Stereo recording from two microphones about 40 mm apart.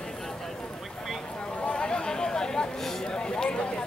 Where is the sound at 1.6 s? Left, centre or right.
Left.